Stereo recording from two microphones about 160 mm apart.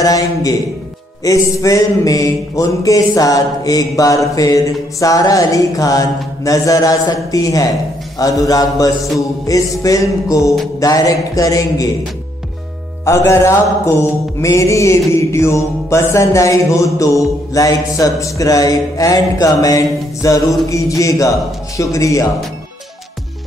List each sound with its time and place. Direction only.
0.0 s music: 20° left (ahead or behind)
13.0 s music: 15° left (ahead or behind)